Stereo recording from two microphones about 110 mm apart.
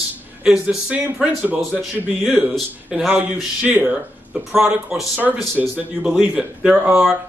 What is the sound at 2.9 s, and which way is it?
A man's voice, 5° right (ahead or behind).